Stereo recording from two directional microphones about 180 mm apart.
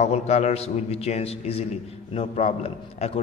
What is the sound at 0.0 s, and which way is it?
A man's voice, 35° left (ahead or behind).